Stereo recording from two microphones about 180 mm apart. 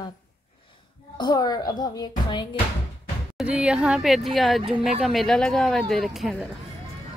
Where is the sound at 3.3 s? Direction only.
5° right (ahead or behind).